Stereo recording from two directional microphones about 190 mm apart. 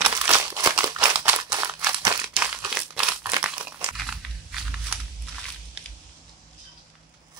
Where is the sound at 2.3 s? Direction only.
5° right (ahead or behind).